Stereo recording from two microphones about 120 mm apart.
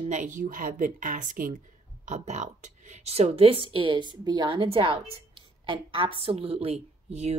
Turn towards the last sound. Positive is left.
turn(degrees=-65)  # may be behind; listen again after turning